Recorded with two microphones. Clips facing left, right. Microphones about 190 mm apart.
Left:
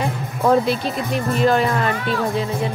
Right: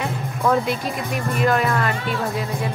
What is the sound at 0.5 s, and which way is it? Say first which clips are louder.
Speech: left 4 dB; 30° left (ahead or behind).